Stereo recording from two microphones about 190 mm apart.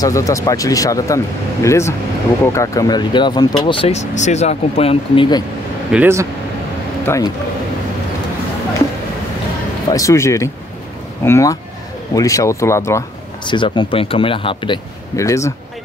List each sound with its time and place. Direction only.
0.0 s speech: 15° left (ahead or behind)
5.9 s speech: 10° right (ahead or behind)
7.1 s speech: 10° left (ahead or behind)
9.8 s speech: 15° left (ahead or behind)